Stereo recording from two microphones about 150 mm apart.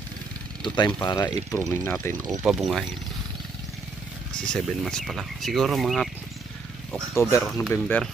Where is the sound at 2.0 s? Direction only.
15° left (ahead or behind).